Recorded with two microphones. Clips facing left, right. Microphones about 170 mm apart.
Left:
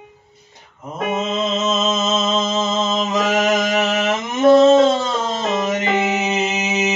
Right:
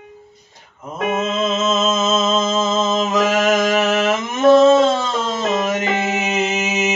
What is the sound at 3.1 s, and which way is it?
Mantra, 15° left (ahead or behind).